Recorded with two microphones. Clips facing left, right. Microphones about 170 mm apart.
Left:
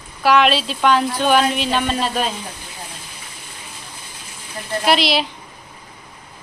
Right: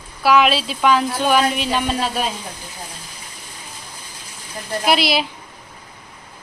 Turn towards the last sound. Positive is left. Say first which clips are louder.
# left 1 dB
turn(degrees=-10)  # may be behind; listen again after turning